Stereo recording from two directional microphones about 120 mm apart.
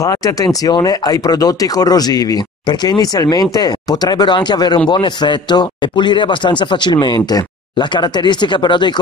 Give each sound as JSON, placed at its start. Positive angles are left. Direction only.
{"t": 0.0, "sound": "speech", "side_deg": 30}